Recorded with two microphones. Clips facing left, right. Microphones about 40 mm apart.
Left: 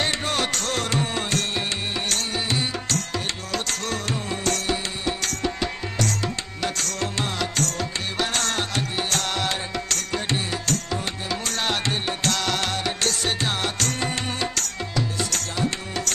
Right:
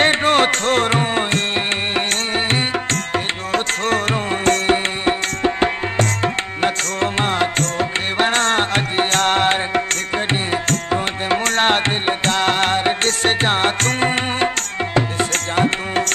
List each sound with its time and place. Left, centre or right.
0.0 s music: right
4.5 s music: right